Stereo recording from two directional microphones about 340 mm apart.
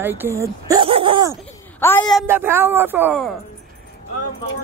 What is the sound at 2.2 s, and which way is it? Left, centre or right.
Speech, centre.